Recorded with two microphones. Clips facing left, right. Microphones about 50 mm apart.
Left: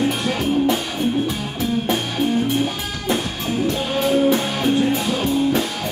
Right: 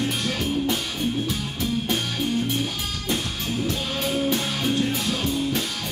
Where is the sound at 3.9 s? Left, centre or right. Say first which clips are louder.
Left 9 dB; centre.